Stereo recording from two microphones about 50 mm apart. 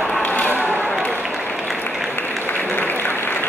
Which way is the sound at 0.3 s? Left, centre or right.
Left.